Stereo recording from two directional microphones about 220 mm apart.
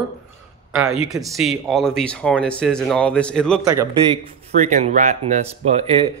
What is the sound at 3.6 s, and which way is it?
Speech, 15° right (ahead or behind).